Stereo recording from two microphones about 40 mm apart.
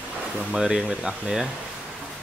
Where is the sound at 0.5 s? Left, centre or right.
Centre.